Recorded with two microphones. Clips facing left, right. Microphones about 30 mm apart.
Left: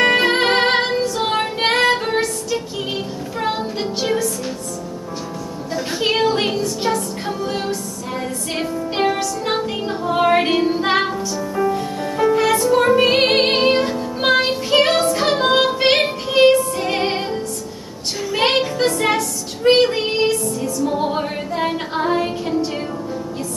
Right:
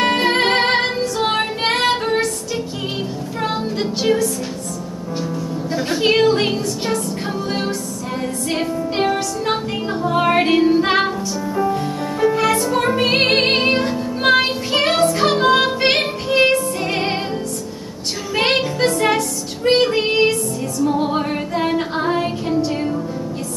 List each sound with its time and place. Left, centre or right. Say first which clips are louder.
0.0 s music: left 1 dB; centre
5.9 s music: right 3 dB; centre
8.5 s music: right 3 dB; centre
18.6 s music: right 1 dB; centre
20.0 s music: right 2 dB; centre
20.8 s music: right 3 dB; centre